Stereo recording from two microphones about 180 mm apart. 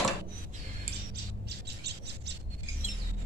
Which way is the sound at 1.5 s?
65° right (ahead or behind).